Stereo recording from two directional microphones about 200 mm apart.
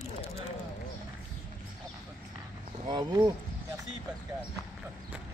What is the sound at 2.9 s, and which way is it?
Speech, 20° right (ahead or behind).